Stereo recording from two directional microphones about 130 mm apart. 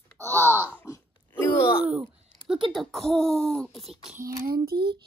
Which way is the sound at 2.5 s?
Centre (ahead or behind).